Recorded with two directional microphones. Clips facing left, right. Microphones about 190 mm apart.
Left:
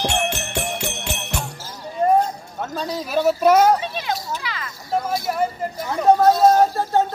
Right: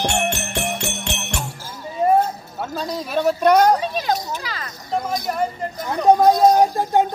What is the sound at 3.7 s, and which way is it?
Children playing, 40° right (ahead or behind).